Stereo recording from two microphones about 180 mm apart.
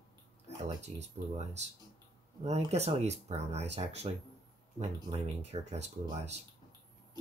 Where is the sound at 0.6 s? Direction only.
40° right (ahead or behind).